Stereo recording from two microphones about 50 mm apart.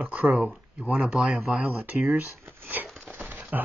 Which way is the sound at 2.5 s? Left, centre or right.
Right.